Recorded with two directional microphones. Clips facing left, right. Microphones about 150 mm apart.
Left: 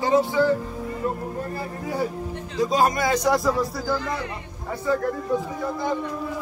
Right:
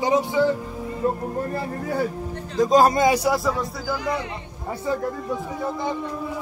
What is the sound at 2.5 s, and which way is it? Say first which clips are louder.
Speech: right 4 dB; 45° right (ahead or behind).